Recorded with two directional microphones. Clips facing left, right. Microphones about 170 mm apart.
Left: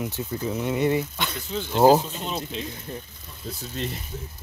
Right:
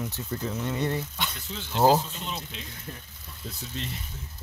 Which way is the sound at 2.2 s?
35° left (ahead or behind).